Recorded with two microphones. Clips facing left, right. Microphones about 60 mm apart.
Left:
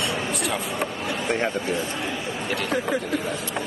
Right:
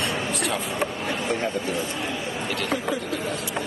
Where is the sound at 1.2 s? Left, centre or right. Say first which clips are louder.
Left 2 dB; left.